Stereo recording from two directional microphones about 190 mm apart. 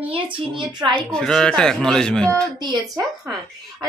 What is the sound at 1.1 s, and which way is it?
Speech, 5° left (ahead or behind).